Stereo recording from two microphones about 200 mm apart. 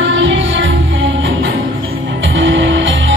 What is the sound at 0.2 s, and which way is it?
Music, 70° right (ahead or behind).